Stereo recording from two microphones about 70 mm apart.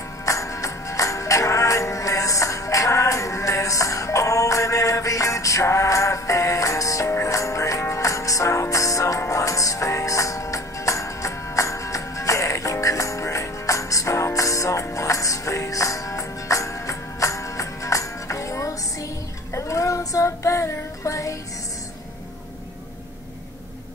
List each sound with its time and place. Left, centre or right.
0.2 s music: left